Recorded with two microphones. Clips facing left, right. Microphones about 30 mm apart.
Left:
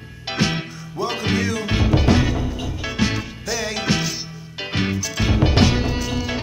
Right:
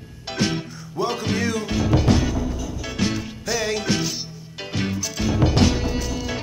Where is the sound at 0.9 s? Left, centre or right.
Centre.